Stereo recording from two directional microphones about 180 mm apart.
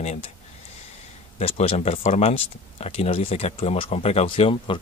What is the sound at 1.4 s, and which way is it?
Speech, 35° left (ahead or behind).